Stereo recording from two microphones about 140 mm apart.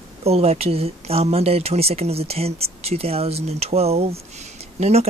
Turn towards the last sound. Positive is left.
turn(degrees=-50)  # may be behind; listen again after turning